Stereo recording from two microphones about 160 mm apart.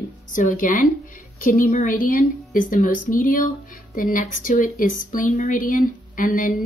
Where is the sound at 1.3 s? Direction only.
60° left (ahead or behind).